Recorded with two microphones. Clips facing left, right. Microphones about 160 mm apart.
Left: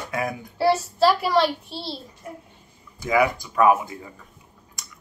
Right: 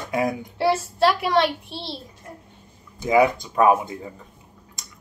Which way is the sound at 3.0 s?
25° right (ahead or behind).